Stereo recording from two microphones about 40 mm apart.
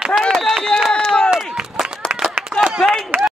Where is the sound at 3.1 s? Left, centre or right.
Right.